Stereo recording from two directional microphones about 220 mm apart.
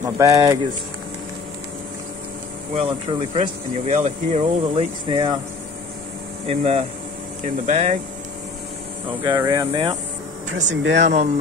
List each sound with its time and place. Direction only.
0.0 s speech: 15° right (ahead or behind)
2.7 s speech: 30° right (ahead or behind)
6.4 s speech: 25° right (ahead or behind)
9.2 s speech: 20° right (ahead or behind)
10.5 s speech: 55° right (ahead or behind)